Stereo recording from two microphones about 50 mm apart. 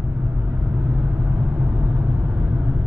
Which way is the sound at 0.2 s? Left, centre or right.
Right.